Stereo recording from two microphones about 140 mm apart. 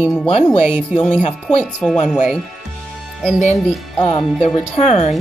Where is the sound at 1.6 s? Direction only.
5° left (ahead or behind).